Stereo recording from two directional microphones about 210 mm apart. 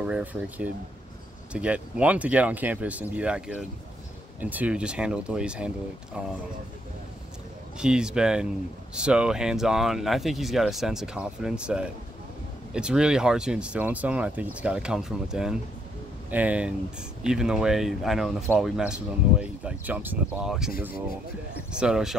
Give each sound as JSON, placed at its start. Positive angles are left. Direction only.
{"t": 0.0, "sound": "speech", "side_deg": -5}
{"t": 7.8, "sound": "speech", "side_deg": -5}
{"t": 21.7, "sound": "speech", "side_deg": -5}